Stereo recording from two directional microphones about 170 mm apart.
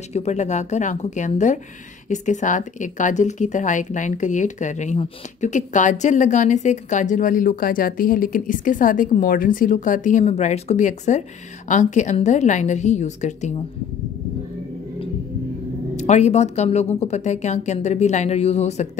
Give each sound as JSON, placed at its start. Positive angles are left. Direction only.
{"t": 0.1, "sound": "speech", "side_deg": 40}
{"t": 16.0, "sound": "speech", "side_deg": 40}